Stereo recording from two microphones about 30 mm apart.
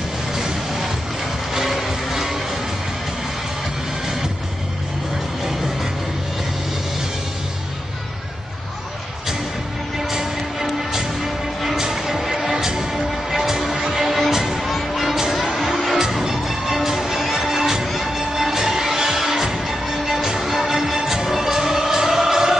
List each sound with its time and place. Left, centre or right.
1.5 s music: centre
10.1 s music: centre
14.7 s music: centre
15.5 s music: centre